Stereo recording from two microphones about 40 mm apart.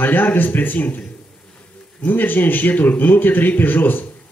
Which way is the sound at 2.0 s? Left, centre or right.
Left.